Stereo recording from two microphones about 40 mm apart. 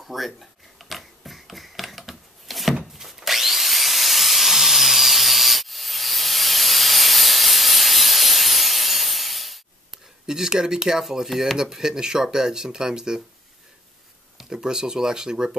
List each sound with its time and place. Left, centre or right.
0.0 s mechanisms: centre
2.9 s drill: centre
3.2 s wood: centre
9.8 s speech: centre
11.2 s speech: centre
11.5 s speech: centre
14.4 s speech: centre